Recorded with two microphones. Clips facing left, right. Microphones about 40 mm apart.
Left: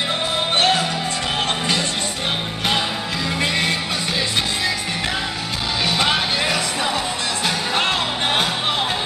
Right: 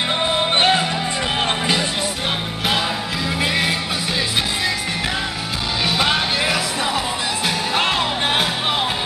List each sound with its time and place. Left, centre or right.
0.6 s music: centre
3.3 s music: centre
5.9 s music: centre